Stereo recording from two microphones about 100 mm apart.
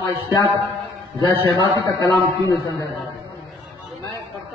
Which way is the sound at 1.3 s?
50° right (ahead or behind).